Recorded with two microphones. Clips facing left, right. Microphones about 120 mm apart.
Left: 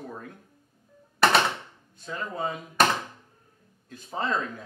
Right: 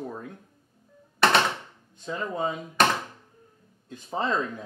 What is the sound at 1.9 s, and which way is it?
Speech, 20° right (ahead or behind).